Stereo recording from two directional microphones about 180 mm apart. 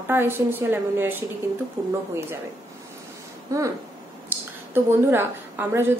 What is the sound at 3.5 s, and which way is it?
A woman's voice, 15° right (ahead or behind).